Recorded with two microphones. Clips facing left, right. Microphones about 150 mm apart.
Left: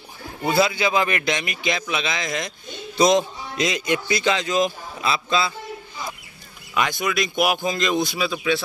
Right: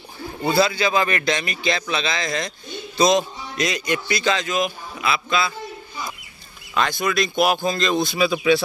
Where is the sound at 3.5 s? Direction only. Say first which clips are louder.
Left 1 dB; 20° left (ahead or behind).